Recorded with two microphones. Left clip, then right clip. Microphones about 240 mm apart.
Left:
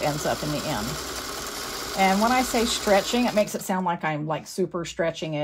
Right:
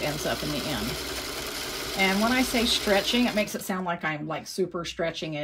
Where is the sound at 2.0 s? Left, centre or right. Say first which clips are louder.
Left 4 dB; centre.